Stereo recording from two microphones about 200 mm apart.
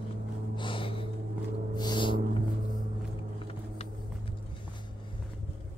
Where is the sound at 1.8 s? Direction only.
25° left (ahead or behind).